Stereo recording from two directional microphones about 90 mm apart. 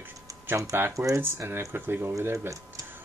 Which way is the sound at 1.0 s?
35° right (ahead or behind).